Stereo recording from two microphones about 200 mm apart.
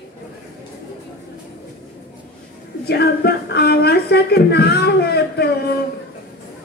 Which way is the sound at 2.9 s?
55° left (ahead or behind).